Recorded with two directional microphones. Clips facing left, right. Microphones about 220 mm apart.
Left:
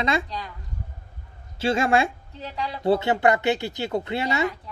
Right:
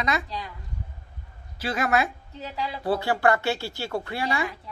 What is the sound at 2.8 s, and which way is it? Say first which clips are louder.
Speech: left 3 dB; 20° left (ahead or behind).